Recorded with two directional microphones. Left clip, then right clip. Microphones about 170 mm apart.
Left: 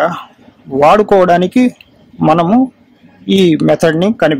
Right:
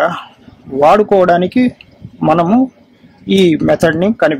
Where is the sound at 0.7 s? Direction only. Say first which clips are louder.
Left 1 dB; 15° left (ahead or behind).